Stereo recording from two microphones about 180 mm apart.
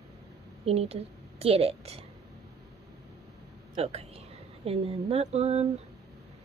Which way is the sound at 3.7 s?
35° right (ahead or behind).